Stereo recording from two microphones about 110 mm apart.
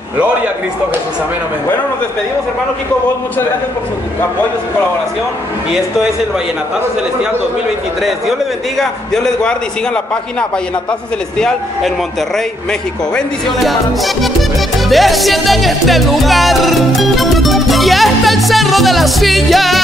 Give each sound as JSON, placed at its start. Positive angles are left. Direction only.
{"t": 8.0, "sound": "music", "side_deg": 0}
{"t": 11.3, "sound": "music", "side_deg": 5}
{"t": 13.1, "sound": "music", "side_deg": 0}